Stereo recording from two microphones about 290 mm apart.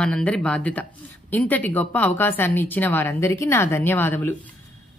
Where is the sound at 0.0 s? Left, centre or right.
Centre.